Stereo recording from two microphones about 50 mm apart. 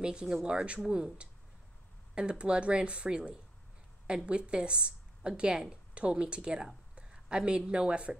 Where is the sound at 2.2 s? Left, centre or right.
Centre.